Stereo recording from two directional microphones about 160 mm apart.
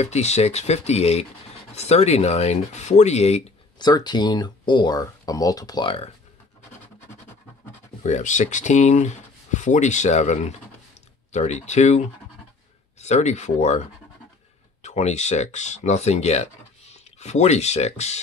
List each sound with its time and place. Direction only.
0.0 s speech: 45° left (ahead or behind)
3.7 s speech: 25° left (ahead or behind)
8.0 s speech: 50° left (ahead or behind)
13.0 s speech: 45° left (ahead or behind)
14.8 s speech: 45° left (ahead or behind)